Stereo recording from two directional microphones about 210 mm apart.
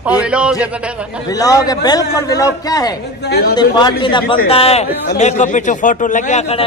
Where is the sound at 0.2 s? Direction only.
5° right (ahead or behind).